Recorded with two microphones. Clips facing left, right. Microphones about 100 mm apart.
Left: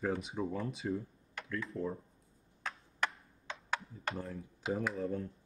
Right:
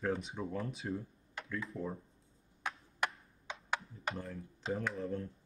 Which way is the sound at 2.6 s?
15° right (ahead or behind).